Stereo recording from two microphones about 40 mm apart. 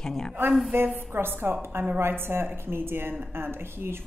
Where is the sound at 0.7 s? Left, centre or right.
Right.